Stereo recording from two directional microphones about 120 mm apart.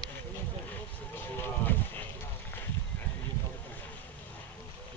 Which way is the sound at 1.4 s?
15° left (ahead or behind).